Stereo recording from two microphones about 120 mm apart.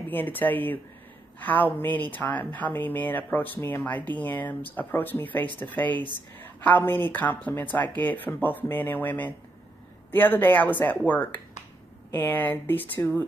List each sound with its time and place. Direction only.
0.1 s speech: 15° left (ahead or behind)
12.1 s speech: 15° left (ahead or behind)